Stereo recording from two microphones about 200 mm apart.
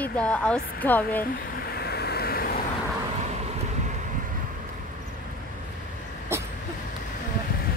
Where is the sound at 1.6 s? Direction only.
50° left (ahead or behind).